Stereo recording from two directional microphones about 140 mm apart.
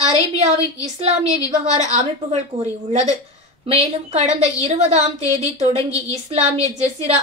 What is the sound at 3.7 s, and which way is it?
A woman's voice, 50° right (ahead or behind).